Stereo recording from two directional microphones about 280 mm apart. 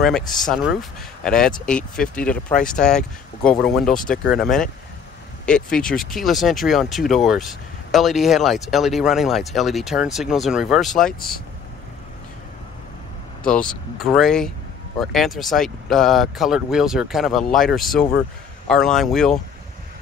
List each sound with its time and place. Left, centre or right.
0.0 s speech: centre
11.1 s speech: left
13.4 s speech: centre